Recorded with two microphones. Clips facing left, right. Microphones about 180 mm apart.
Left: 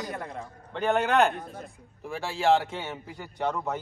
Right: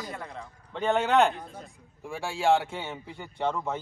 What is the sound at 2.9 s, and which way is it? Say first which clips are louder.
Speech: left 1 dB; 5° left (ahead or behind).